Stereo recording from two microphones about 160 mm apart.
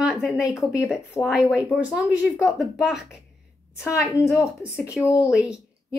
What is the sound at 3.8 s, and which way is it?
Speech, 20° left (ahead or behind).